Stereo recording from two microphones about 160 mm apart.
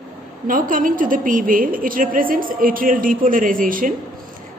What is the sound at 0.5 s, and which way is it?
A woman's voice, 60° right (ahead or behind).